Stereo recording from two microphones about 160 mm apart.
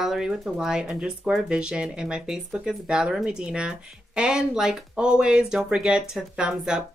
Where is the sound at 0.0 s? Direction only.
5° right (ahead or behind).